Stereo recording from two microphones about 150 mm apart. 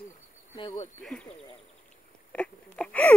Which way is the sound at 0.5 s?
35° left (ahead or behind).